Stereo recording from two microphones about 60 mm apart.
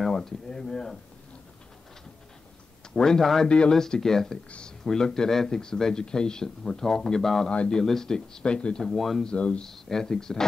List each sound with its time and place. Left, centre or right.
0.0 s speech: centre
2.9 s speech: centre
3.4 s speech: centre
7.5 s speech: centre
9.7 s speech: centre